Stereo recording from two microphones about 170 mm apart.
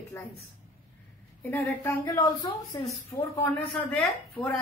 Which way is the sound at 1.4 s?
10° left (ahead or behind).